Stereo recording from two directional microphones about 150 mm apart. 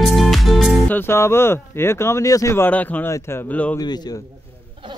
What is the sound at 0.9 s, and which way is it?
Speech, 15° left (ahead or behind).